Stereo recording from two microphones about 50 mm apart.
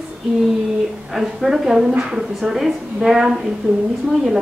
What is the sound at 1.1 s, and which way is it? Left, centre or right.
Speech, centre.